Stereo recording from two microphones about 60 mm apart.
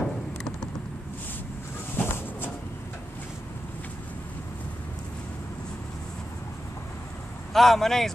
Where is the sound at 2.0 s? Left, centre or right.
Left.